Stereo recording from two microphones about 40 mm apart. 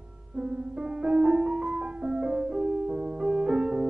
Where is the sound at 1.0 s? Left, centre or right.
Right.